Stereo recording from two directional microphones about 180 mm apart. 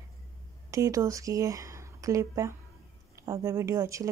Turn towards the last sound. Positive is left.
turn(degrees=-15)  # may be behind; listen again after turning